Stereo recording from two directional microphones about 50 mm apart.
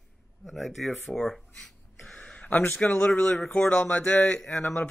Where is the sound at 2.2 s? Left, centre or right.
Left.